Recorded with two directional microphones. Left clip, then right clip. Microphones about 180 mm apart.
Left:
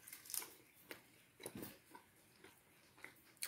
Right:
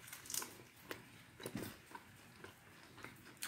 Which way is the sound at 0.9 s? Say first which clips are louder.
Right 6 dB; 10° left (ahead or behind).